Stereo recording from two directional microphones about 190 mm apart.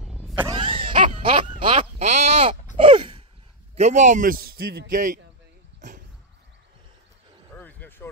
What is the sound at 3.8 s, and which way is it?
A man's voice, 40° right (ahead or behind).